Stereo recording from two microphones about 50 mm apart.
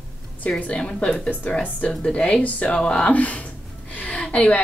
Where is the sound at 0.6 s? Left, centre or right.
Left.